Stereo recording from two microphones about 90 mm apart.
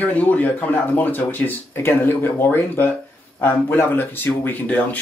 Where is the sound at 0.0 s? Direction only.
20° left (ahead or behind).